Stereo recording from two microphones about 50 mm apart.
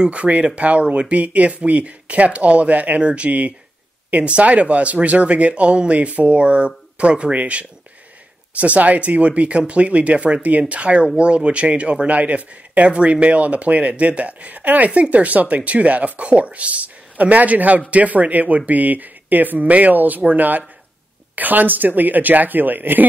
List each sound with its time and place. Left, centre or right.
0.0 s speech: right